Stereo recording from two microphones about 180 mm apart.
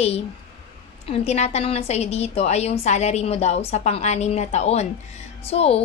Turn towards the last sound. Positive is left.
turn(degrees=35)  # may be behind; listen again after turning